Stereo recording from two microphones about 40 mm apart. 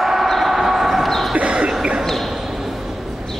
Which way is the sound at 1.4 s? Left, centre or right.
Right.